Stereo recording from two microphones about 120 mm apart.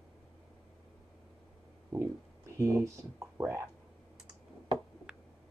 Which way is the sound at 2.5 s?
25° right (ahead or behind).